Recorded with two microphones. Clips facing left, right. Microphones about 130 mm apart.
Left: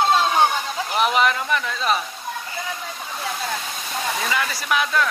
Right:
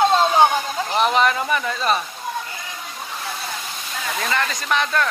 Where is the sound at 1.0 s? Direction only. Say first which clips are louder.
Right 1 dB; 5° left (ahead or behind).